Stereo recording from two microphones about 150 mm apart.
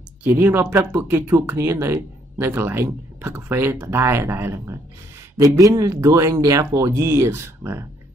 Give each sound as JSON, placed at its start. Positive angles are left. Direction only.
{"t": 0.2, "sound": "speech", "side_deg": -15}